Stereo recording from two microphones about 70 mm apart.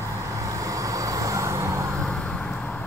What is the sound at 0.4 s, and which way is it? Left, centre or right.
Vehicle, right.